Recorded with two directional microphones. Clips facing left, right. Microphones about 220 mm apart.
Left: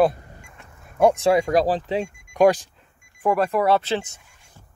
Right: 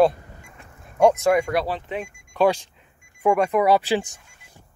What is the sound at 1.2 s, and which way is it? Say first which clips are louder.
Speech: left 2 dB; 35° left (ahead or behind).